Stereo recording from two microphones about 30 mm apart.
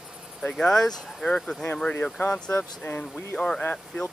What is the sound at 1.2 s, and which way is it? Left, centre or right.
Speech, left.